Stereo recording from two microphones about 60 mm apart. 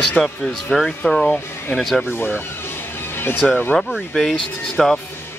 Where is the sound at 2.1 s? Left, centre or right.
Left.